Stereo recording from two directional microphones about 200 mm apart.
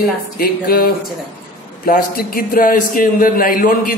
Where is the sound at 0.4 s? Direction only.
50° left (ahead or behind).